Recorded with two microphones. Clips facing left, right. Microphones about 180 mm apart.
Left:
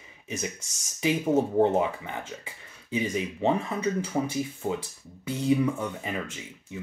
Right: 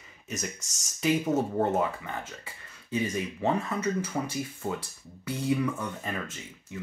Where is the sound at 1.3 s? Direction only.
15° left (ahead or behind).